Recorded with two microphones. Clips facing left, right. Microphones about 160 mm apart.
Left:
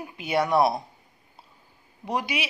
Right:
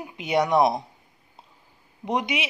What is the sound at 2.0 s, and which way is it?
Speech, 20° right (ahead or behind).